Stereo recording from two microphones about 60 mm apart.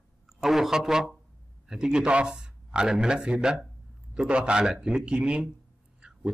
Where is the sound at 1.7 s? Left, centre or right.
Centre.